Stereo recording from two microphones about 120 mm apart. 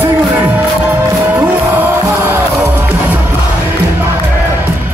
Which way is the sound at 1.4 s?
20° right (ahead or behind).